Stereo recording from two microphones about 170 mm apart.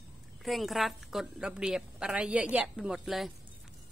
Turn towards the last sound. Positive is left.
turn(degrees=0)  # may be behind; listen again after turning